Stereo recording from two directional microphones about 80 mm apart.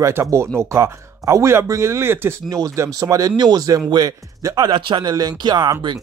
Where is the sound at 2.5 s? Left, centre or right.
Right.